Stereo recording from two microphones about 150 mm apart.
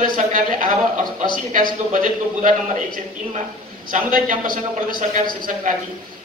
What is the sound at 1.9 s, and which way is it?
Speech, 60° right (ahead or behind).